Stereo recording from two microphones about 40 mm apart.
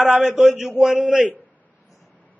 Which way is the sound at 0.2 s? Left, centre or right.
Right.